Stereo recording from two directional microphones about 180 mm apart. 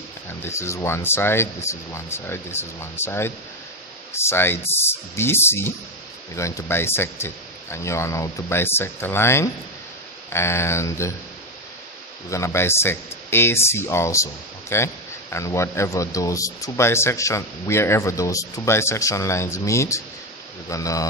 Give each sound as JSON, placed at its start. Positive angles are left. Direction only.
{"t": 0.4, "sound": "speech", "side_deg": 15}
{"t": 12.3, "sound": "speech", "side_deg": 15}